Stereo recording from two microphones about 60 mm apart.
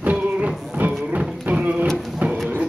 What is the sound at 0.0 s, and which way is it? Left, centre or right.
Music, right.